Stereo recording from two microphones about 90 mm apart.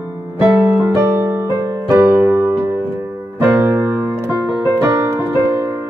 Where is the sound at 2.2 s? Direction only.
25° right (ahead or behind).